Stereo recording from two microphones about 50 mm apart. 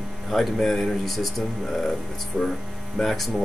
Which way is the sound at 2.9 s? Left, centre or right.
Centre.